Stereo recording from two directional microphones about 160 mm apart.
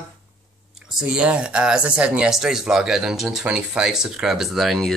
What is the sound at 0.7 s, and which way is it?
Speech, 5° right (ahead or behind).